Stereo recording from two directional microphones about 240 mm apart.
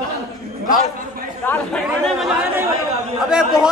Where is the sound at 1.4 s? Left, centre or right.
Centre.